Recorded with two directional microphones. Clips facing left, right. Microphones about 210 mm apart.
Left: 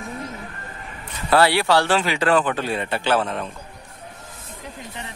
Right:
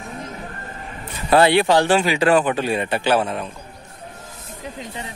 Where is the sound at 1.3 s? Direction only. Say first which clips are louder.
Right 3 dB; 20° right (ahead or behind).